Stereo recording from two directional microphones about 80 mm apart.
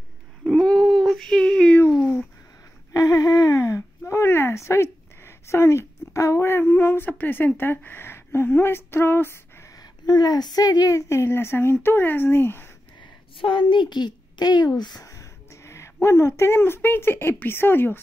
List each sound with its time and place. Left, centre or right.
0.4 s a sound: centre
2.9 s a sound: left
6.6 s speech: left
9.8 s a woman's voice: left
13.0 s a woman's voice: left
15.0 s speech: left